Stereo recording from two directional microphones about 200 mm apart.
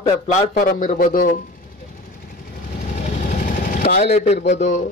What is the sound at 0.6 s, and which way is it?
Speech, 40° left (ahead or behind).